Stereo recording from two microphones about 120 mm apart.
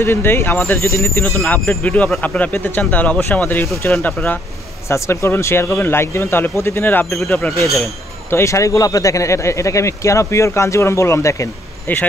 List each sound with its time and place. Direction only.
0.0 s speech: 20° left (ahead or behind)